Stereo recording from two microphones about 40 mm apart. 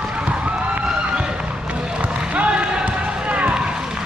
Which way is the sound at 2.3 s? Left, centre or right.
Right.